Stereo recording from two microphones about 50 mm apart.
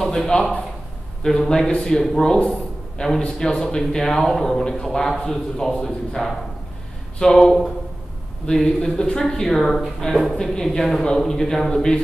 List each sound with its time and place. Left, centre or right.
0.0 s speech: centre
3.0 s a man's voice: centre